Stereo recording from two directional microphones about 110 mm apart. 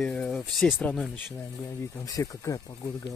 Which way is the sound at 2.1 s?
30° left (ahead or behind).